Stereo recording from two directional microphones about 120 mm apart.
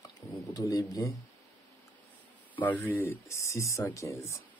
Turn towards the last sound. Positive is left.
turn(degrees=25)  # may be behind; listen again after turning